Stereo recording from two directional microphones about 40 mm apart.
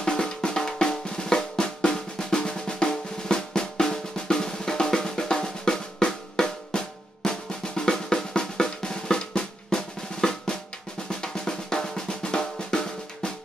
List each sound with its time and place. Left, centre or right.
0.0 s drum: centre